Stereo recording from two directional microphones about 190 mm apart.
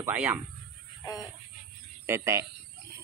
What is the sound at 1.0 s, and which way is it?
Speech, 20° left (ahead or behind).